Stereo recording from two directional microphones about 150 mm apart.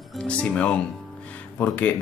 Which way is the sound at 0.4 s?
10° left (ahead or behind).